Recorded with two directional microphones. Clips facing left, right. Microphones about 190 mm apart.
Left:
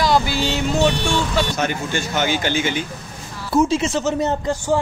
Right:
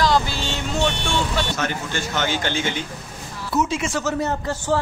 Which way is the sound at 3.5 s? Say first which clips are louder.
Left 5 dB; 30° left (ahead or behind).